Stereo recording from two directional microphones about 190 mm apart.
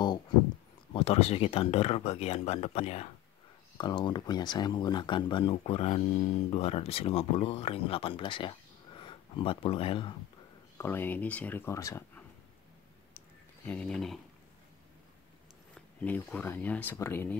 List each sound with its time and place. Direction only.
0.9 s speech: 35° left (ahead or behind)
3.7 s speech: 25° left (ahead or behind)
10.8 s speech: 10° left (ahead or behind)
13.7 s speech: 5° left (ahead or behind)
16.0 s speech: 10° left (ahead or behind)